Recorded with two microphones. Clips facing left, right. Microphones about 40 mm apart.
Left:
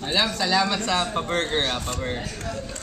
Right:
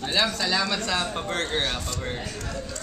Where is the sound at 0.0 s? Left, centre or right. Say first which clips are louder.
Left 1 dB; centre.